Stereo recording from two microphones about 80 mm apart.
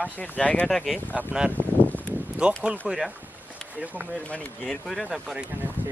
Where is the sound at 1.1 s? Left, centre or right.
Centre.